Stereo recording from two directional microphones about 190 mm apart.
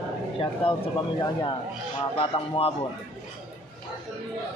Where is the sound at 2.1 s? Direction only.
30° left (ahead or behind).